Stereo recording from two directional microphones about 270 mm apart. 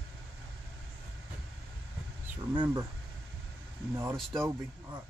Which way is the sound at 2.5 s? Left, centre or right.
Centre.